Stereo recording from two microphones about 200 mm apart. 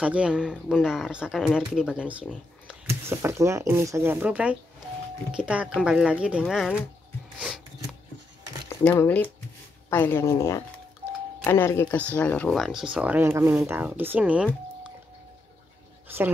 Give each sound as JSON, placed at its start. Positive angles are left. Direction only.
{"t": 0.0, "sound": "speech", "side_deg": -5}
{"t": 7.3, "sound": "a sound", "side_deg": 0}
{"t": 8.6, "sound": "speech", "side_deg": 15}